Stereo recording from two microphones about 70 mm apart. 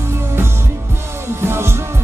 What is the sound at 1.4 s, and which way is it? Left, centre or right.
Music, right.